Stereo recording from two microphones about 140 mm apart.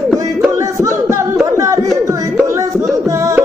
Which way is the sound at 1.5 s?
20° right (ahead or behind).